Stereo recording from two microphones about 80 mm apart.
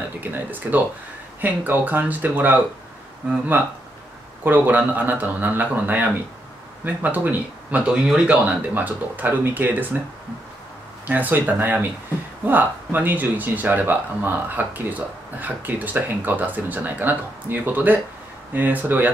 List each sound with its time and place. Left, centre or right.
0.2 s speech: right
11.1 s speech: right